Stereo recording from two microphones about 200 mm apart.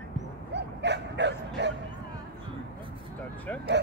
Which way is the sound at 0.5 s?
60° right (ahead or behind).